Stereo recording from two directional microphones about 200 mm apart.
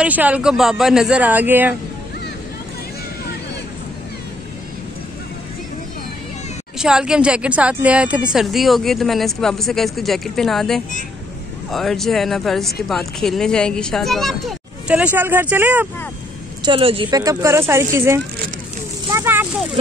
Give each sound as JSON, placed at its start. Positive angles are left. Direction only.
{"t": 0.0, "sound": "speech", "side_deg": -5}
{"t": 6.8, "sound": "a woman's voice", "side_deg": -5}
{"t": 16.6, "sound": "speech", "side_deg": -25}